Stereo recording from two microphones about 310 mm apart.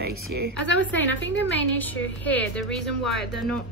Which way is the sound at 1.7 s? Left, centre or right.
Centre.